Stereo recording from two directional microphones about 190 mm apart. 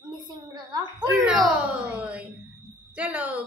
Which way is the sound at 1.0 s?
5° right (ahead or behind).